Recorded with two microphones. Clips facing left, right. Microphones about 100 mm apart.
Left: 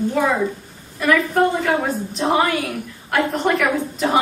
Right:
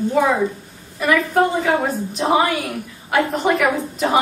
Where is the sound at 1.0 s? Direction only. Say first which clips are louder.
Even; 5° right (ahead or behind).